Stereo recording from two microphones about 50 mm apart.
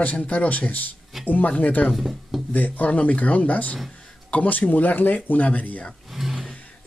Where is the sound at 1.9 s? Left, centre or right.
Centre.